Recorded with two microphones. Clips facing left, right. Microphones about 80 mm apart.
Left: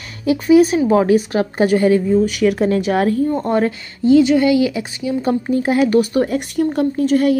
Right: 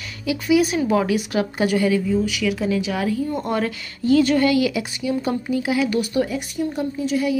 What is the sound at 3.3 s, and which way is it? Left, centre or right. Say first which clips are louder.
A woman's voice: left 6 dB; left.